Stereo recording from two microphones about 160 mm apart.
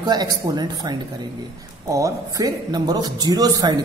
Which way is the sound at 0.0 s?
25° right (ahead or behind).